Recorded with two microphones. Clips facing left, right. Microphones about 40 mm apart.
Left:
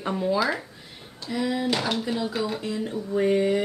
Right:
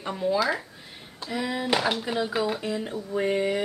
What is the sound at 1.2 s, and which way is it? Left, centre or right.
Speech, centre.